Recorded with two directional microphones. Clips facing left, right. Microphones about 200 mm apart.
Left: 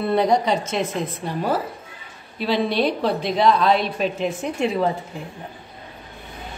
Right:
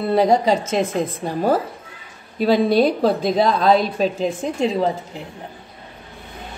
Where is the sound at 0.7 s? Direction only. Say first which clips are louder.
Right 4 dB; 45° right (ahead or behind).